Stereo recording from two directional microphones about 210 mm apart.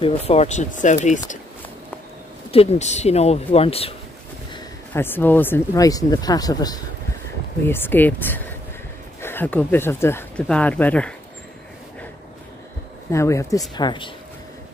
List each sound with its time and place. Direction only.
0.0 s speech: 30° left (ahead or behind)
2.5 s speech: 30° left (ahead or behind)
4.5 s speech: 15° left (ahead or behind)
13.1 s speech: 15° left (ahead or behind)